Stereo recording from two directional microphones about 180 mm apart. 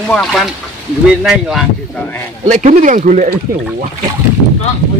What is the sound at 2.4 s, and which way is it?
Speech, 40° right (ahead or behind).